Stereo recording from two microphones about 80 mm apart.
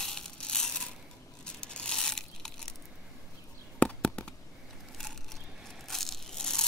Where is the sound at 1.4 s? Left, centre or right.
Centre.